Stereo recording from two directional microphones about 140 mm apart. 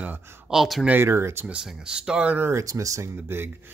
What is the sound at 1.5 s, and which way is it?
Speech, 5° right (ahead or behind).